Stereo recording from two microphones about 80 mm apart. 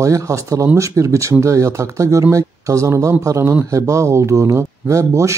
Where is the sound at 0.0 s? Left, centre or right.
Right.